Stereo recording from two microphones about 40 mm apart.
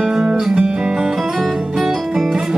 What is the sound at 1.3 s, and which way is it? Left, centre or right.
Guitar, centre.